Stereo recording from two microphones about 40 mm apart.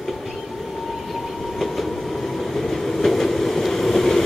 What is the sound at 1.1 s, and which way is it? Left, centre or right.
Train, centre.